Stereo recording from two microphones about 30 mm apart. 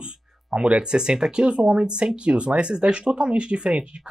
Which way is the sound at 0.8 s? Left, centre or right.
Right.